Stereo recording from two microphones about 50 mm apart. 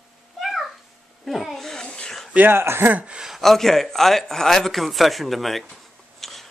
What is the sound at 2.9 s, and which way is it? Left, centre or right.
Speech, right.